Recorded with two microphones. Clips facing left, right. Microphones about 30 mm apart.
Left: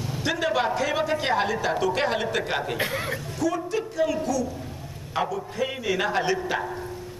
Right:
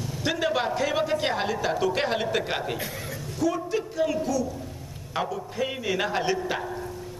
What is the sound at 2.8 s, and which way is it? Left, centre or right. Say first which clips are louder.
Speech: left 7 dB; left.